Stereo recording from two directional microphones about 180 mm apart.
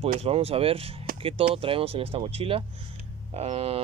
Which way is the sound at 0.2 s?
35° right (ahead or behind).